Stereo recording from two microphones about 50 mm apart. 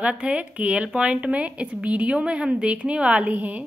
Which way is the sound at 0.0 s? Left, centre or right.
Right.